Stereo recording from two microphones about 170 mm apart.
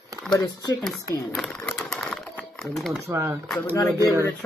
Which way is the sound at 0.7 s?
Centre (ahead or behind).